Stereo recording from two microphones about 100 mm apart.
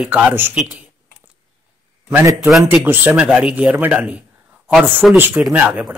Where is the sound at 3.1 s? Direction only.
10° right (ahead or behind).